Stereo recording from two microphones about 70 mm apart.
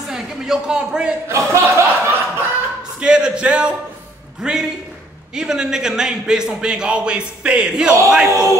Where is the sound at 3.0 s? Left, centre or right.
Centre.